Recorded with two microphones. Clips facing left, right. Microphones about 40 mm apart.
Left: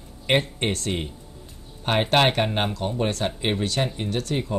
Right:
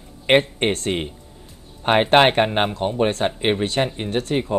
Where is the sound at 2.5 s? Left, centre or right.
Centre.